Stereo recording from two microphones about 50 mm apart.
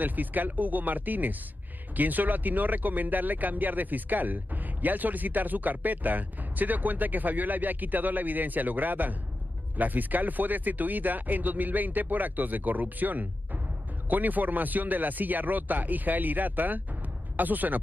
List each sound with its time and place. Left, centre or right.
0.0 s speech: right